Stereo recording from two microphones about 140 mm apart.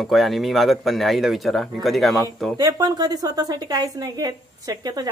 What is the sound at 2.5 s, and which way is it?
A woman's voice, 30° right (ahead or behind).